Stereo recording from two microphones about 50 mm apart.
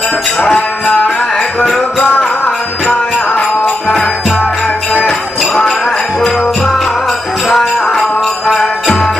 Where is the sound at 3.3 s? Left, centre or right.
Left.